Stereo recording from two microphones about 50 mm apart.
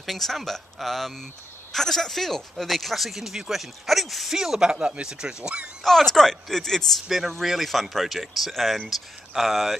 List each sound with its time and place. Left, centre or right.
0.0 s speech: centre
4.4 s speech: centre
5.9 s speech: centre
7.1 s speech: centre